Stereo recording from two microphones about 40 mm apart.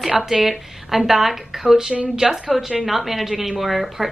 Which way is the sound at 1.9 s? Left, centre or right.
Right.